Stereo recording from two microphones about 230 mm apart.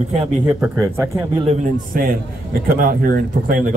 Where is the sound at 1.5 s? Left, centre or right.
Right.